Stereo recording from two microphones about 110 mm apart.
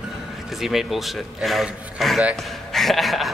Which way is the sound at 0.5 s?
Centre (ahead or behind).